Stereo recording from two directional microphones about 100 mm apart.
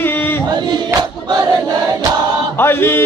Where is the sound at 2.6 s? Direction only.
25° left (ahead or behind).